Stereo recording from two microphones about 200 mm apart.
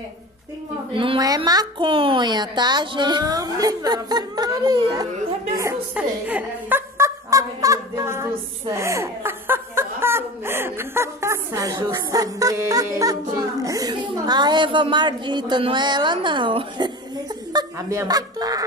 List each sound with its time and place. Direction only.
0.9 s a woman's voice: 25° right (ahead or behind)
5.6 s fowl: 10° right (ahead or behind)
17.5 s a woman's voice: 15° right (ahead or behind)